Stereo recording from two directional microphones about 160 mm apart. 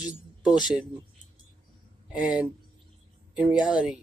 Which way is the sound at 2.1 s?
10° right (ahead or behind).